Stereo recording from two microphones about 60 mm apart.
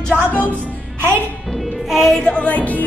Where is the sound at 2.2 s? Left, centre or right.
Centre.